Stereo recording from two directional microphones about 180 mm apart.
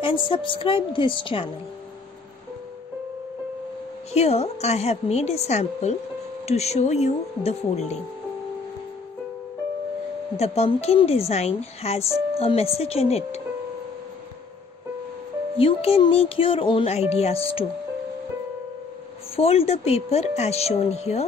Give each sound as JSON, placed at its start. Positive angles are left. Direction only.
{"t": 0.0, "sound": "a woman's voice", "side_deg": 30}
{"t": 4.1, "sound": "a woman's voice", "side_deg": 35}
{"t": 10.3, "sound": "a woman's voice", "side_deg": 35}
{"t": 15.5, "sound": "a woman's voice", "side_deg": 30}
{"t": 19.3, "sound": "a woman's voice", "side_deg": 35}